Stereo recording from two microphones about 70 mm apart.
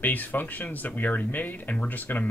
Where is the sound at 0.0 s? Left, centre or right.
Left.